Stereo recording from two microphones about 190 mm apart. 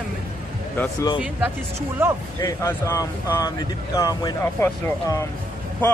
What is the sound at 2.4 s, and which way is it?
Speech, 15° left (ahead or behind).